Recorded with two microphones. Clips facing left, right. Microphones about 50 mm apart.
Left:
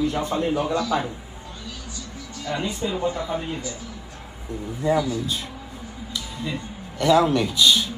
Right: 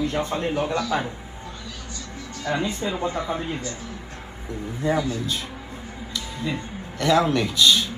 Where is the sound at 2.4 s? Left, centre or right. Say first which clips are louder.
Right 1 dB; right.